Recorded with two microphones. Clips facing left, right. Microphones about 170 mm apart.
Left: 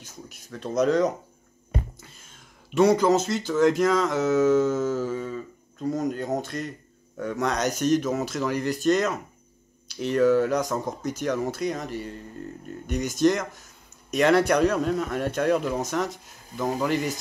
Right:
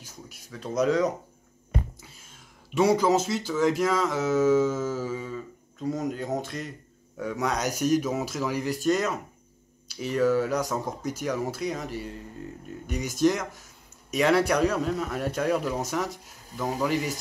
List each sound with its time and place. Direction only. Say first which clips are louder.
0.5 s a man's voice: left 2 dB; 5° right (ahead or behind)